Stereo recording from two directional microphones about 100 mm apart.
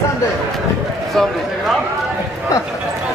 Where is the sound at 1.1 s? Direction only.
Centre (ahead or behind).